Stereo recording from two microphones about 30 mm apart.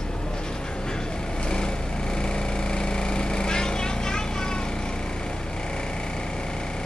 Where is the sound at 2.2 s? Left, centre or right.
Left.